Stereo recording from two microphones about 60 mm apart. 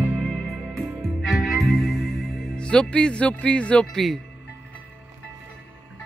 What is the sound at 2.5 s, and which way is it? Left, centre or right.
Speech, centre.